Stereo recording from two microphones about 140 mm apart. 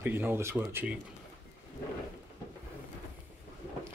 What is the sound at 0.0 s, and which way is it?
Speech, 15° right (ahead or behind).